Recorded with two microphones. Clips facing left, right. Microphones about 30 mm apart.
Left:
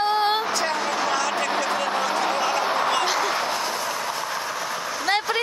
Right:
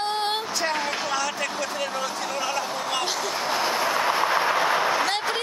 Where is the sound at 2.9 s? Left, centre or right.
Centre.